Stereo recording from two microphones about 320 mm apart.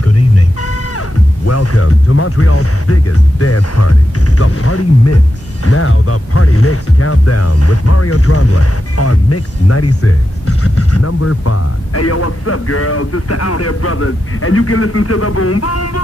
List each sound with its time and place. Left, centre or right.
0.0 s music: left
4.4 s speech: left